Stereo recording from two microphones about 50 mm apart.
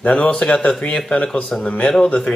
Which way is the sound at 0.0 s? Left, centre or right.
Left.